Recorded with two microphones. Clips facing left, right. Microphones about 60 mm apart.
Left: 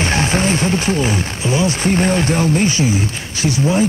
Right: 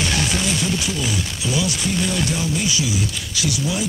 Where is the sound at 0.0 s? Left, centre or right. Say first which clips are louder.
Left 5 dB; left.